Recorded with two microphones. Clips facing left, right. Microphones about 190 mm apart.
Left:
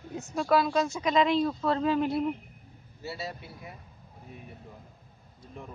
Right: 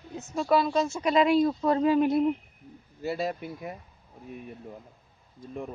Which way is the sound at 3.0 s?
55° right (ahead or behind).